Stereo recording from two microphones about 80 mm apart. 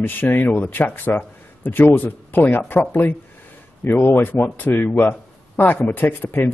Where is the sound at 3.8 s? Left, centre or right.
Left.